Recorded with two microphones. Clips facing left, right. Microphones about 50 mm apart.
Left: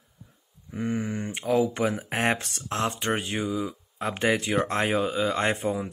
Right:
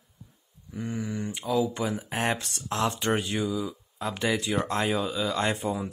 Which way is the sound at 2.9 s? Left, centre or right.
Left.